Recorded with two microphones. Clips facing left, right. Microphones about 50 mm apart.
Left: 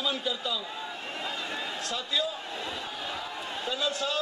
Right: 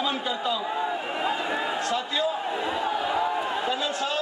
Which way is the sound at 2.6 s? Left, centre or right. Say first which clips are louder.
Right 10 dB; right.